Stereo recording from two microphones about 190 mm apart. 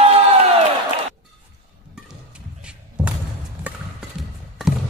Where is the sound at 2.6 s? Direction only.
5° right (ahead or behind).